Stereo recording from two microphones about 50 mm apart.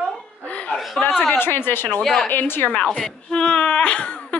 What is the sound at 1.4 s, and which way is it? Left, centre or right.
Speech, left.